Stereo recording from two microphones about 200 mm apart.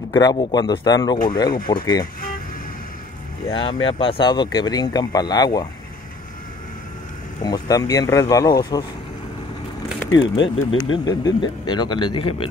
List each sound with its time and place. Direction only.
0.1 s speech: 20° left (ahead or behind)
3.4 s speech: 25° left (ahead or behind)
7.4 s speech: 20° left (ahead or behind)
10.1 s speech: 70° left (ahead or behind)
11.1 s speech: 20° left (ahead or behind)